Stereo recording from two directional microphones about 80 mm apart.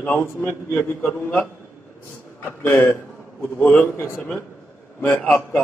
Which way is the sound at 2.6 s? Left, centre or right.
Left.